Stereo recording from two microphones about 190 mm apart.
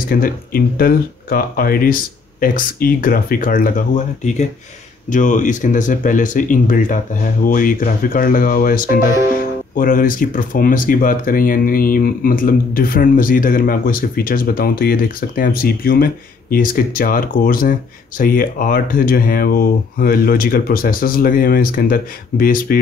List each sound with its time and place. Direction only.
0.1 s speech: 50° left (ahead or behind)